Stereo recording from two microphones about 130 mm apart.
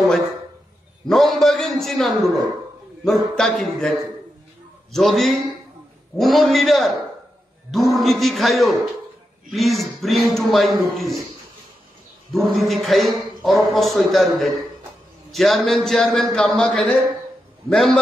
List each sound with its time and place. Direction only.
1.0 s a sound: centre (ahead or behind)
3.1 s speech: 5° left (ahead or behind)
4.9 s speech: centre (ahead or behind)
12.5 s speech: centre (ahead or behind)